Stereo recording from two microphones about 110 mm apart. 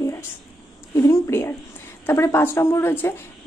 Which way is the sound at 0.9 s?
30° left (ahead or behind).